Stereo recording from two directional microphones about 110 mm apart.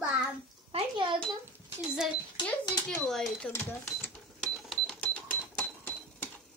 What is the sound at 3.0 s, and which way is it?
Speech, 5° left (ahead or behind).